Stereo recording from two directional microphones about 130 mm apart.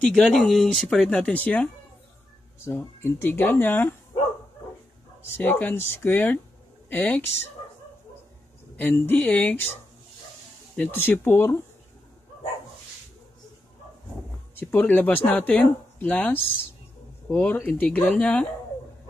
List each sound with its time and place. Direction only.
0.0 s speech: 5° left (ahead or behind)
5.4 s speech: 10° left (ahead or behind)
8.7 s speech: 15° left (ahead or behind)
10.8 s speech: 15° left (ahead or behind)
14.5 s speech: 15° left (ahead or behind)